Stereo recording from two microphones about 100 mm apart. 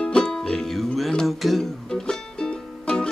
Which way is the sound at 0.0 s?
10° left (ahead or behind).